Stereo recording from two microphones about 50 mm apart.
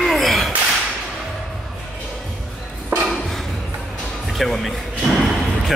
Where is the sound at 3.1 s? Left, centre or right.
Centre.